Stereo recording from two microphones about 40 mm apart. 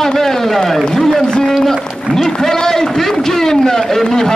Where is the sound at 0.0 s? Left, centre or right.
Centre.